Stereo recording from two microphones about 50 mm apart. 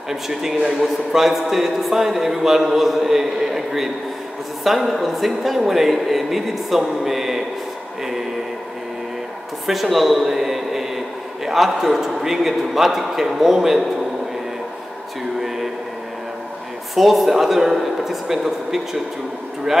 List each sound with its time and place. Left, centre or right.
0.1 s speech: centre
1.1 s a man's voice: centre
9.7 s a man's voice: centre
16.9 s a man's voice: centre